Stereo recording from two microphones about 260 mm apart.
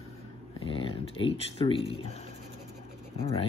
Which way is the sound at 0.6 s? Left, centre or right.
Left.